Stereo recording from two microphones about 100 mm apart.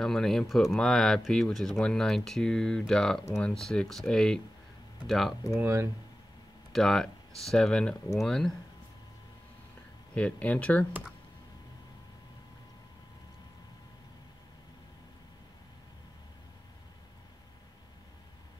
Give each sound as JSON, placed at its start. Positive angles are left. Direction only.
{"t": 0.0, "sound": "speech", "side_deg": 5}
{"t": 5.6, "sound": "speech", "side_deg": -25}
{"t": 6.7, "sound": "speech", "side_deg": 5}
{"t": 10.1, "sound": "speech", "side_deg": 15}